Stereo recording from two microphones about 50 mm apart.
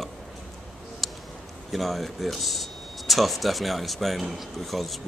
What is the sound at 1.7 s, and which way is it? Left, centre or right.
Speech, centre.